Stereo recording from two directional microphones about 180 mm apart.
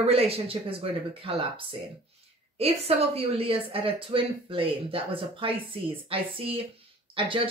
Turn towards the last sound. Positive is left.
turn(degrees=-30)  # may be behind; listen again after turning